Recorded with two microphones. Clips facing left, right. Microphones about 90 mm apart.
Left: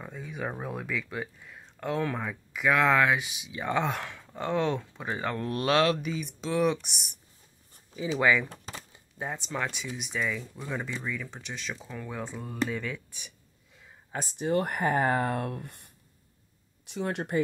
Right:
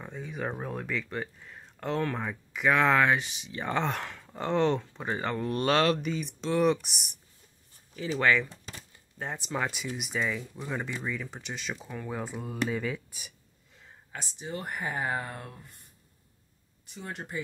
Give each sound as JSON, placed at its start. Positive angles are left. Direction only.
{"t": 0.0, "sound": "speech", "side_deg": 0}
{"t": 7.9, "sound": "speech", "side_deg": 15}
{"t": 9.2, "sound": "speech", "side_deg": -5}
{"t": 14.1, "sound": "speech", "side_deg": 45}
{"t": 14.5, "sound": "speech", "side_deg": 60}